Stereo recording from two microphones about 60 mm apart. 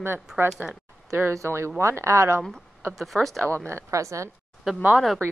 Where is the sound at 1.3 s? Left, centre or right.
Right.